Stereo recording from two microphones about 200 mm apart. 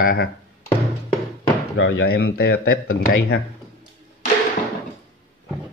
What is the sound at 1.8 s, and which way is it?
Speech, 55° left (ahead or behind).